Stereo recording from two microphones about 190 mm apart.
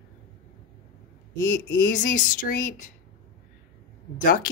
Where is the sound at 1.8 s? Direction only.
45° left (ahead or behind).